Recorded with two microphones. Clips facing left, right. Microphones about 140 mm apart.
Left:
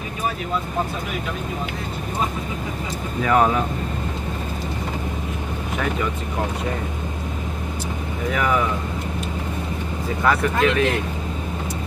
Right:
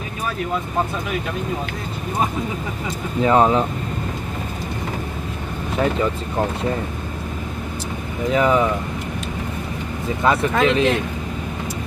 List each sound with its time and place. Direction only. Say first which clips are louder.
3.2 s speech: right 3 dB; 25° right (ahead or behind)
8.3 s speech: right 5 dB; 25° right (ahead or behind)
10.2 s speech: right 2 dB; 25° right (ahead or behind)